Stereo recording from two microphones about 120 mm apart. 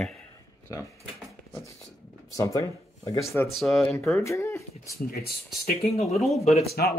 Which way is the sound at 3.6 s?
Centre (ahead or behind).